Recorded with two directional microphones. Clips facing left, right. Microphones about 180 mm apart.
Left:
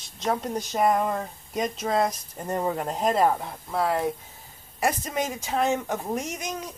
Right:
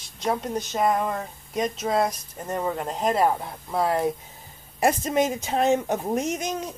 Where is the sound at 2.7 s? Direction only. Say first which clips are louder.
Right 1 dB; centre (ahead or behind).